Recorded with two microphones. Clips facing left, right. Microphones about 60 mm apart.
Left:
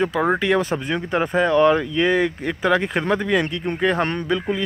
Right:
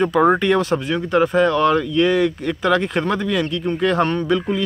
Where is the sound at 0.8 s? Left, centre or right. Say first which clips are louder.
Right 4 dB; centre.